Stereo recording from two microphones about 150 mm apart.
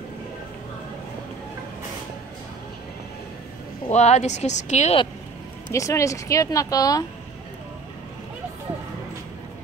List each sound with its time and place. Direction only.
3.9 s a woman's voice: 50° left (ahead or behind)
5.7 s a woman's voice: 20° left (ahead or behind)